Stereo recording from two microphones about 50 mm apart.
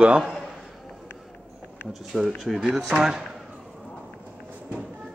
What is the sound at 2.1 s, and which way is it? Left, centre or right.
A man's voice, centre.